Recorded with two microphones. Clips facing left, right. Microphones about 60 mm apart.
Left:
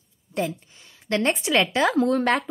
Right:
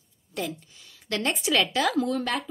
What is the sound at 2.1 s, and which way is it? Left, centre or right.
Speech, left.